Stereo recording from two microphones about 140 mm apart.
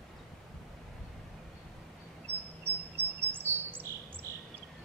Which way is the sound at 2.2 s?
10° left (ahead or behind).